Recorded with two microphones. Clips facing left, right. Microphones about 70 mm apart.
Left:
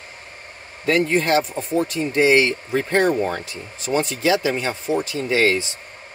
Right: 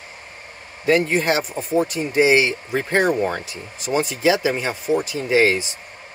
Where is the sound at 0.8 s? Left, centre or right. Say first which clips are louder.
Right 1 dB; centre.